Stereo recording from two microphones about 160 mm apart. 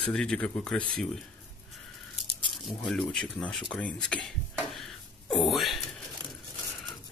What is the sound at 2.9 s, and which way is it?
Speech, centre (ahead or behind).